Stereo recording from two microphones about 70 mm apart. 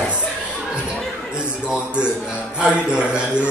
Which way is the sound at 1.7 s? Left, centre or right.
Centre.